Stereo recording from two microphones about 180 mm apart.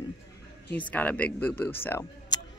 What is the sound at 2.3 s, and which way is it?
Tick, 20° left (ahead or behind).